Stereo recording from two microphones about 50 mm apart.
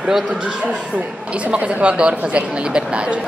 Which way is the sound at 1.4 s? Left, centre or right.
Right.